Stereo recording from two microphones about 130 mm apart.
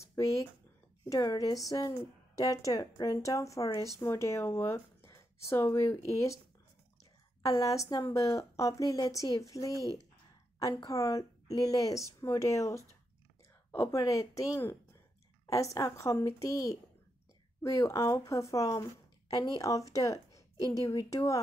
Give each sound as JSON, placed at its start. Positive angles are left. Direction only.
{"t": 0.0, "sound": "a sound", "side_deg": 25}
{"t": 1.0, "sound": "speech", "side_deg": 30}
{"t": 7.4, "sound": "speech", "side_deg": 25}
{"t": 9.8, "sound": "speech", "side_deg": -30}
{"t": 10.6, "sound": "a woman's voice", "side_deg": 25}